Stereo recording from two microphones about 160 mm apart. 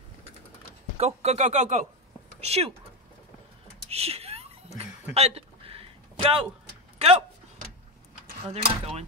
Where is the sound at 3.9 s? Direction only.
40° right (ahead or behind).